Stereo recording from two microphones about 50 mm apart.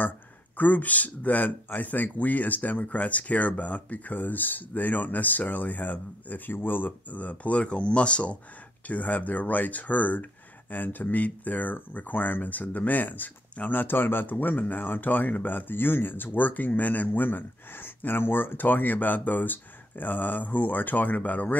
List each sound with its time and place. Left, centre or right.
0.6 s speech: left